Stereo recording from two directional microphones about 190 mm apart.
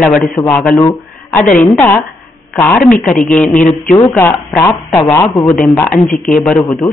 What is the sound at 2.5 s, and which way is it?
Speech, 10° left (ahead or behind).